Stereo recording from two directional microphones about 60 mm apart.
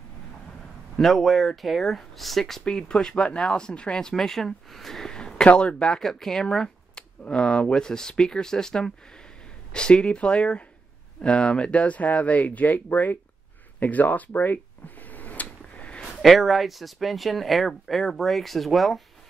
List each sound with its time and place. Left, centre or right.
1.0 s speech: centre
2.6 s speech: centre; by 13.2 s left
13.7 s a sound: left
16.2 s speech: centre